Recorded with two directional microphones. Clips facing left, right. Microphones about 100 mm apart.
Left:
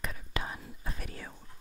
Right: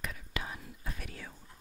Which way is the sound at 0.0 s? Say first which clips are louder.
Left 2 dB; 35° left (ahead or behind).